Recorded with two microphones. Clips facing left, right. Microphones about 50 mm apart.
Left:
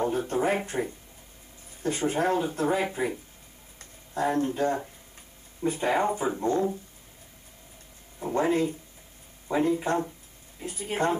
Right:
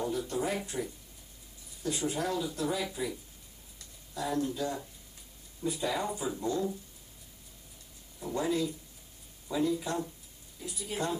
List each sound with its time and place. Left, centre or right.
0.0 s speech: left
8.2 s speech: left